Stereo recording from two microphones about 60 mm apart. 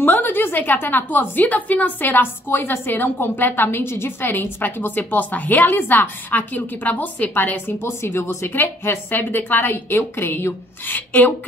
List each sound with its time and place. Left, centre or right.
0.0 s a woman's voice: left
7.8 s a woman's voice: left